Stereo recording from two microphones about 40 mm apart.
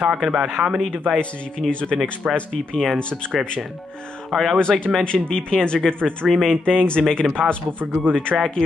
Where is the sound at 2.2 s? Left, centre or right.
Right.